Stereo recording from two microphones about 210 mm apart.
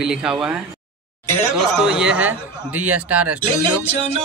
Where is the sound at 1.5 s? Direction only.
5° right (ahead or behind).